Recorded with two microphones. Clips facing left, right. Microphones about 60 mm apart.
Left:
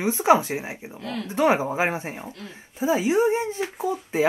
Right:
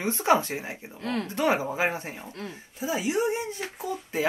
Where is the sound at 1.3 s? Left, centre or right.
Centre.